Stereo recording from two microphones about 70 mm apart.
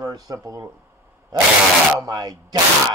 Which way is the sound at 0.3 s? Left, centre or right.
Right.